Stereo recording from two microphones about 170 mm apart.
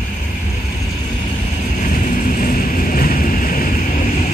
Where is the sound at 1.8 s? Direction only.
50° left (ahead or behind).